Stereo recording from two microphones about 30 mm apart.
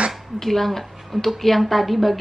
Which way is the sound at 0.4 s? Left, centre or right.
Centre.